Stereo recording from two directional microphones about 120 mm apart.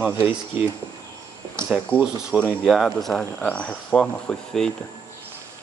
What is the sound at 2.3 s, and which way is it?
Speech, centre (ahead or behind).